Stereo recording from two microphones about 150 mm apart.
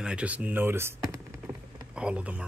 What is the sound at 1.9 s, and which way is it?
Speech, 10° right (ahead or behind).